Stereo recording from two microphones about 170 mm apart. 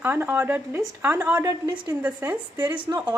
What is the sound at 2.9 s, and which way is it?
Speech, 20° right (ahead or behind).